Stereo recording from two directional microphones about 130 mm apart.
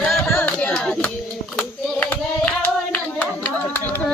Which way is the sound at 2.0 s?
10° left (ahead or behind).